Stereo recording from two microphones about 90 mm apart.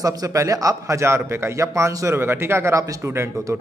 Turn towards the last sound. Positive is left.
turn(degrees=-30)  # may be behind; listen again after turning